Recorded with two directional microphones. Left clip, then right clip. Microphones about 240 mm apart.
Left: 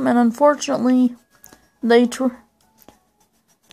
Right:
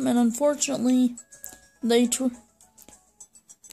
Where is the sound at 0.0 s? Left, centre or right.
Centre.